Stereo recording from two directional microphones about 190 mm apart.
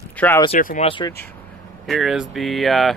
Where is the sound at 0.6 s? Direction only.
45° left (ahead or behind).